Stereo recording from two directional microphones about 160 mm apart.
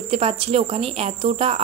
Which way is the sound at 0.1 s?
40° right (ahead or behind).